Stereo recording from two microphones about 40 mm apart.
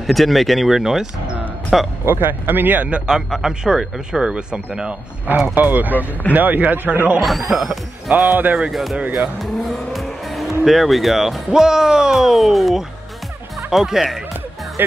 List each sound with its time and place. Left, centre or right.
0.0 s speech: centre
2.0 s speech: right
3.3 s speech: centre
3.6 s speech: centre
5.2 s speech: right
7.2 s speech: centre
8.1 s speech: right
9.4 s speech: centre